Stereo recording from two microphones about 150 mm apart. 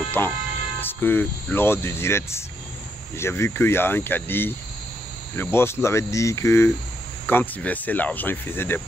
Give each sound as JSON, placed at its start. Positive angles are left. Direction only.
{"t": 0.2, "sound": "speech", "side_deg": 15}